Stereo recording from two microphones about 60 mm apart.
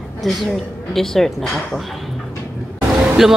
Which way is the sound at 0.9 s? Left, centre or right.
Centre.